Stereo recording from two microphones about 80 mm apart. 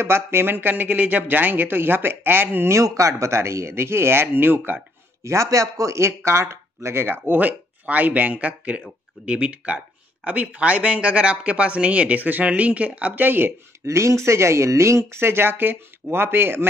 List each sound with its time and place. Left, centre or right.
0.0 s speech: right
3.0 s speech: right
5.2 s speech: right
13.8 s speech: right